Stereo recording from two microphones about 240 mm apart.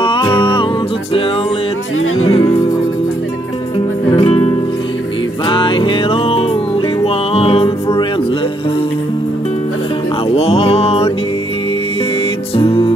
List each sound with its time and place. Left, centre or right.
0.0 s music: left
4.2 s music: left
5.5 s music: left
10.3 s music: left
12.5 s music: left